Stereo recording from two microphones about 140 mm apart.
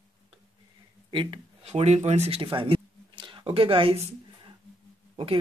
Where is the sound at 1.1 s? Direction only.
40° right (ahead or behind).